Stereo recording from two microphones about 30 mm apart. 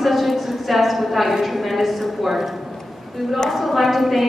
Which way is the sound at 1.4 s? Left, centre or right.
Centre.